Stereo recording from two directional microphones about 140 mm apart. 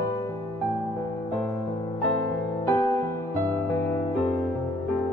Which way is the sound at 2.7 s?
25° left (ahead or behind).